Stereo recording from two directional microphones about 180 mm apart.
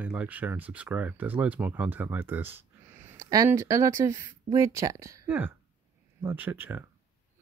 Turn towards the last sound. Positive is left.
turn(degrees=-10)  # may be behind; listen again after turning